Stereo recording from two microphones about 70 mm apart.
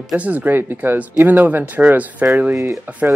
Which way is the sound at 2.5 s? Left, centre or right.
Right.